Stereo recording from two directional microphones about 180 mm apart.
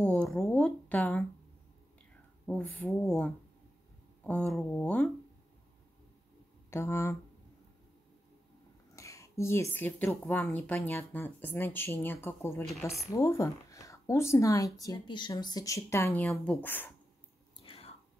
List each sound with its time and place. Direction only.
0.0 s a sound: 5° left (ahead or behind)
2.4 s speech: 10° left (ahead or behind)
6.7 s speech: 15° left (ahead or behind)
8.9 s a sound: 15° left (ahead or behind)
9.8 s speech: 10° left (ahead or behind)
17.6 s whispering: 30° left (ahead or behind)